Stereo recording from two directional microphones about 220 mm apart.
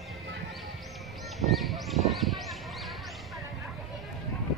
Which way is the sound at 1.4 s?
Centre (ahead or behind).